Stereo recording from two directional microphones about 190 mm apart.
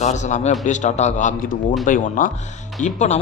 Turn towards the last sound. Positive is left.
turn(degrees=40)  # may be behind; listen again after turning